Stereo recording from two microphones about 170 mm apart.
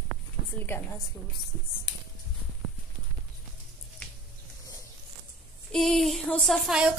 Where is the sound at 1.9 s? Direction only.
90° left.